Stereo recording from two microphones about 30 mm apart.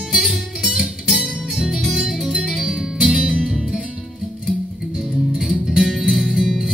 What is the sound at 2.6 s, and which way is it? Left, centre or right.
Music, right.